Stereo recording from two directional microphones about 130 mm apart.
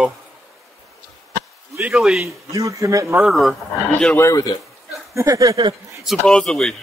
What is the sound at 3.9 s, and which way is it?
Speech, 15° left (ahead or behind).